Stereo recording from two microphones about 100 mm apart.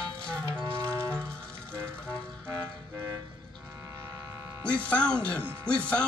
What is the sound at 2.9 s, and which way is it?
Toot, 30° right (ahead or behind).